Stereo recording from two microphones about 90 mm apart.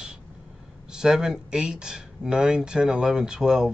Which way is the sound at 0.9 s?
5° right (ahead or behind).